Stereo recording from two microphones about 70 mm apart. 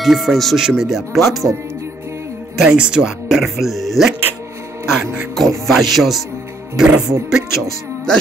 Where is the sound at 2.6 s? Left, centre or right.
Centre.